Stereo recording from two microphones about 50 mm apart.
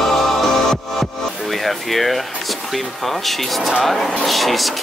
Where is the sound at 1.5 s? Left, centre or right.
Centre.